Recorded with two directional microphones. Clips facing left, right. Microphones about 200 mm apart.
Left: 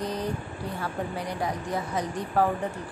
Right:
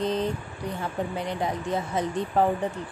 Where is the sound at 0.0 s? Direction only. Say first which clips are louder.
Right 5 dB; 25° right (ahead or behind).